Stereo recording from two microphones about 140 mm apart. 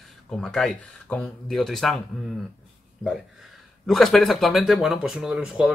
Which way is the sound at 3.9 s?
Centre (ahead or behind).